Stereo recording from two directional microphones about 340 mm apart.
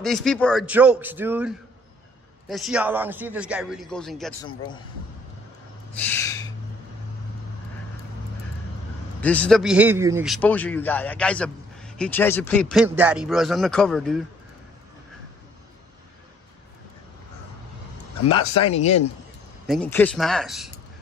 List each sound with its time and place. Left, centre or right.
0.0 s a man's voice: centre
5.9 s a sound: centre
9.2 s a man's voice: centre
18.6 s speech: centre
19.7 s a man's voice: centre